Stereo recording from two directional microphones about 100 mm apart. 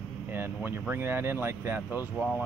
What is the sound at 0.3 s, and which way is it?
Speech, 20° right (ahead or behind).